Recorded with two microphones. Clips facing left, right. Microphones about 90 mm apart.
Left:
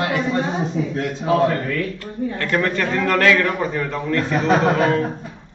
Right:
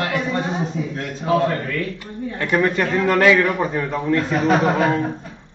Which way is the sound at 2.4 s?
15° right (ahead or behind).